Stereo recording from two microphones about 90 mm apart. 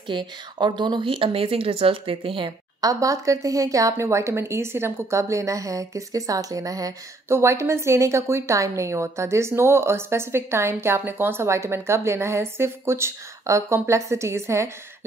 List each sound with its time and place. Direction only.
0.1 s speech: 60° right (ahead or behind); by 2.5 s 75° right (ahead or behind)
2.8 s a woman's voice: 40° right (ahead or behind)
7.2 s a woman's voice: 30° right (ahead or behind)